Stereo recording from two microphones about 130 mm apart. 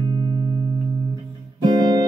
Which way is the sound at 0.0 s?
35° right (ahead or behind).